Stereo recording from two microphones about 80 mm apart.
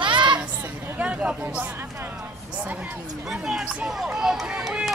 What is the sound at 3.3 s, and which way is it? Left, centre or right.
Speech, centre.